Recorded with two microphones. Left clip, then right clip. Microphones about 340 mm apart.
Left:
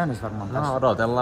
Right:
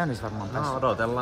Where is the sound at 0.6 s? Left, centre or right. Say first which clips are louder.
Left 4 dB; centre.